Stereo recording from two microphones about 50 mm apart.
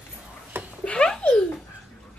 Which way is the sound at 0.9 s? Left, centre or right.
Centre.